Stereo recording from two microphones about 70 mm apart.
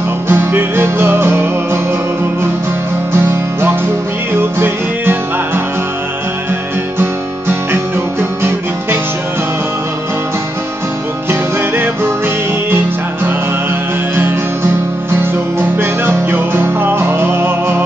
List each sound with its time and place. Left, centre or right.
0.3 s music: right
3.2 s music: right
7.0 s guitar: right
11.2 s music: right
15.8 s music: right